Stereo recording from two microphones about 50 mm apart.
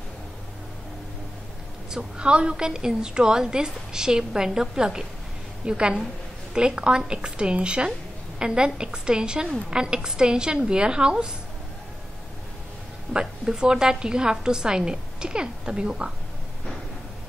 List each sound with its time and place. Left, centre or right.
1.9 s a woman's voice: centre
13.1 s a woman's voice: centre